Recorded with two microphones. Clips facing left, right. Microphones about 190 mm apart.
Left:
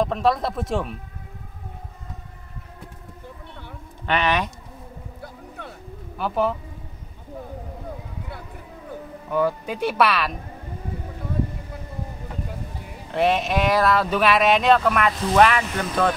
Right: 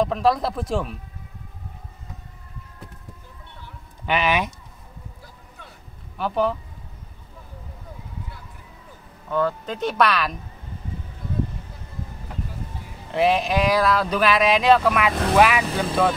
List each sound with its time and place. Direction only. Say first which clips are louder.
0.0 s speech: right 1 dB; centre (ahead or behind)
4.0 s speech: even; 10° right (ahead or behind)
5.6 s a sound: left 8 dB; 60° left (ahead or behind)
6.1 s speech: even; centre (ahead or behind)
9.3 s speech: left 1 dB; 10° left (ahead or behind)
13.1 s speech: right 1 dB; centre (ahead or behind)
15.6 s speech: right 3 dB; 30° right (ahead or behind)